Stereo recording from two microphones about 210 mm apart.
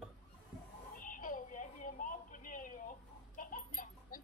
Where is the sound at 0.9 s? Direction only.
40° left (ahead or behind).